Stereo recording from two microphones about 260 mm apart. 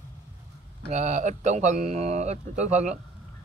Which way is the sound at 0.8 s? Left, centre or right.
Right.